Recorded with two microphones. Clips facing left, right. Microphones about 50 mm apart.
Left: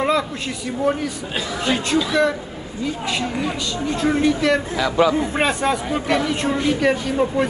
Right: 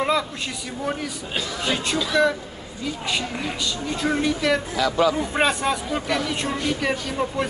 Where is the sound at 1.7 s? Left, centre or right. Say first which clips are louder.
Left 4 dB; centre.